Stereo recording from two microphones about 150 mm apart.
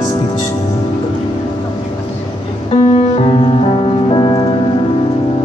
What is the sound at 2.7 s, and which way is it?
Music, 45° left (ahead or behind).